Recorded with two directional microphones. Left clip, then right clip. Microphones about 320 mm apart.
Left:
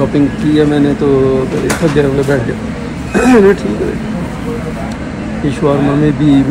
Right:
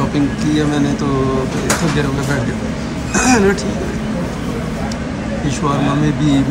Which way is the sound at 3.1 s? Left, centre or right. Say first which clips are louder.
Left 5 dB; right.